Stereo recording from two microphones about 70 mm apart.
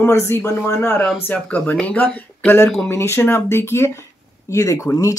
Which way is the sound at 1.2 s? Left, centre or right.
Left.